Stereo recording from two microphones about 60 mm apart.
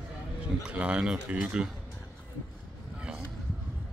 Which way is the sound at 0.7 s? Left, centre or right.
Right.